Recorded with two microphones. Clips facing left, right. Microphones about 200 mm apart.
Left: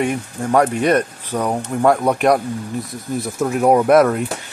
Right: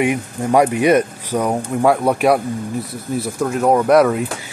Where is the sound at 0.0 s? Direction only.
10° right (ahead or behind).